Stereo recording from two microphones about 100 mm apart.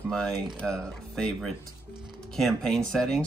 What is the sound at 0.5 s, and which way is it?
Speech, 10° left (ahead or behind).